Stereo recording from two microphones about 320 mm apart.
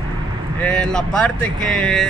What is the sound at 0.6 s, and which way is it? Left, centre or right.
Speech, centre.